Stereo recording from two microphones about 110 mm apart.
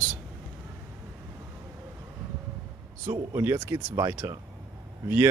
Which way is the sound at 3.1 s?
25° right (ahead or behind).